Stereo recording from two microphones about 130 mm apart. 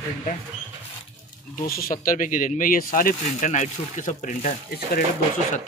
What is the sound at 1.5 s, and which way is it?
Speech, 90° left.